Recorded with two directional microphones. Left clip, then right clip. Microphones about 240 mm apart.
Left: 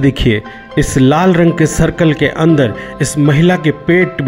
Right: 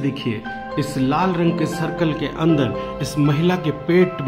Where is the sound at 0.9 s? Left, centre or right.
Left.